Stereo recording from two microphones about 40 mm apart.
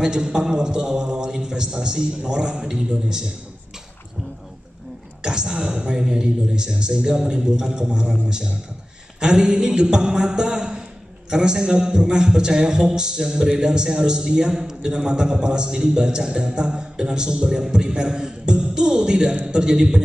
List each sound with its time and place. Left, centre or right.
0.0 s a man's voice: centre
5.2 s a man's voice: centre